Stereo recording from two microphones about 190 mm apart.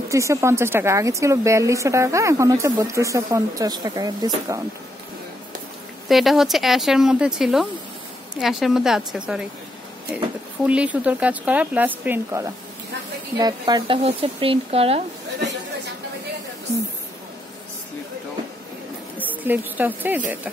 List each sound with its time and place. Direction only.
0.1 s speech: 15° right (ahead or behind)
6.0 s speech: centre (ahead or behind); by 15.0 s 30° right (ahead or behind)
19.1 s a woman's voice: 10° right (ahead or behind)